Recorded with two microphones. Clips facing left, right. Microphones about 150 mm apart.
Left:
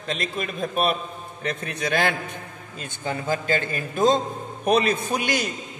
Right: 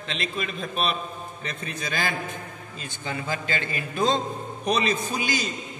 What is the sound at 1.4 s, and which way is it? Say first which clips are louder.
Speech: left 7 dB; 60° left (ahead or behind).